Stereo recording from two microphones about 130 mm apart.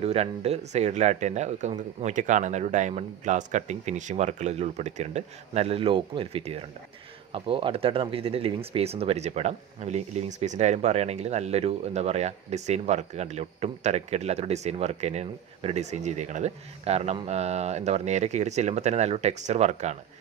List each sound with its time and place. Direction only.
0.0 s speech: 50° right (ahead or behind)